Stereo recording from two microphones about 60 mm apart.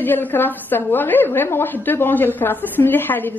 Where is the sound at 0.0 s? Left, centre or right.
Left.